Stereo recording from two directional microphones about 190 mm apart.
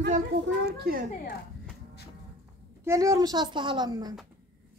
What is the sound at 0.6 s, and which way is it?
Speech, 55° right (ahead or behind).